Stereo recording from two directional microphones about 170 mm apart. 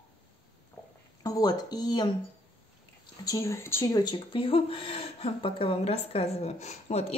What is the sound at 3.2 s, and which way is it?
Speech, 20° left (ahead or behind).